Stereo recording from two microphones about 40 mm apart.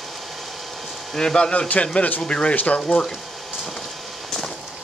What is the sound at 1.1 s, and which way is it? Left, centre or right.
Speech, centre.